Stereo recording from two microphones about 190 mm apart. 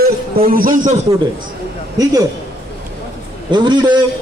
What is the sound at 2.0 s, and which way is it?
Speech, 20° right (ahead or behind).